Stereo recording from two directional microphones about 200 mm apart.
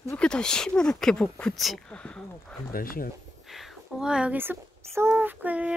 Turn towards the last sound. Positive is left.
turn(degrees=-5)  # may be behind; listen again after turning